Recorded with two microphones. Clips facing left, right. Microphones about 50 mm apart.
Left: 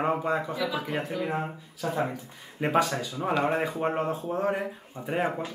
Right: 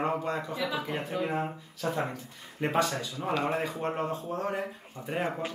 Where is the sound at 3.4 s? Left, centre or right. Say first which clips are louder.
Left 4 dB; left.